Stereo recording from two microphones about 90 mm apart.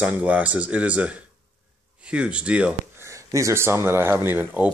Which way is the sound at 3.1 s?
35° right (ahead or behind).